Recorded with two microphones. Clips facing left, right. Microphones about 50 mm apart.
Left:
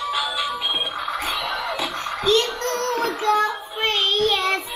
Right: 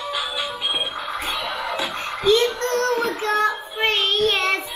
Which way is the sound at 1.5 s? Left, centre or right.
Centre.